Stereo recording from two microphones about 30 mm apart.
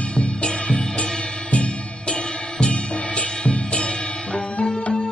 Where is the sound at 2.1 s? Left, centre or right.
Left.